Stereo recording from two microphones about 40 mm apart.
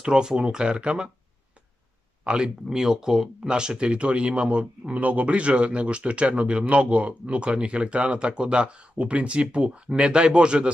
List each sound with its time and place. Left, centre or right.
0.0 s speech: centre
2.2 s speech: right